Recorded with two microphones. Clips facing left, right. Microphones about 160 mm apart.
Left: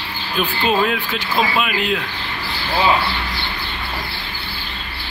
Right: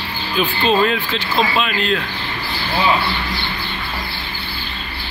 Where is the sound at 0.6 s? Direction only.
5° left (ahead or behind).